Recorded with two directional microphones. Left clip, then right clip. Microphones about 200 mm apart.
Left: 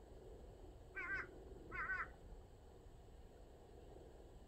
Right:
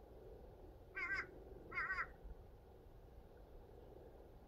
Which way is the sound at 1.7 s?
35° right (ahead or behind).